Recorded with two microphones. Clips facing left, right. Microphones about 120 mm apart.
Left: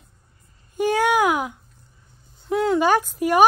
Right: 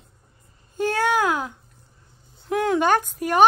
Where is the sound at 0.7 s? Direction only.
15° left (ahead or behind).